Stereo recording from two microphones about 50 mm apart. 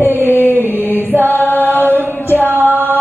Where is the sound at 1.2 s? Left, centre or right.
Left.